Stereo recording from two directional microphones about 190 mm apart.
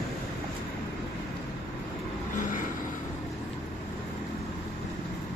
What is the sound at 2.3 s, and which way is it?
Vehicle, 45° left (ahead or behind).